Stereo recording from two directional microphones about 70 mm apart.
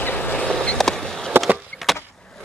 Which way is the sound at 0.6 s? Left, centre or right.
Centre.